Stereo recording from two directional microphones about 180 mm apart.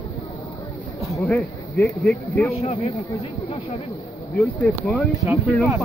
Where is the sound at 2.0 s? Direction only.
Centre (ahead or behind).